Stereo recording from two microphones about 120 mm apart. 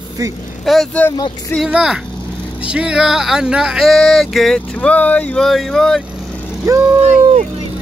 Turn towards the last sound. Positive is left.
turn(degrees=-70)  # may be behind; listen again after turning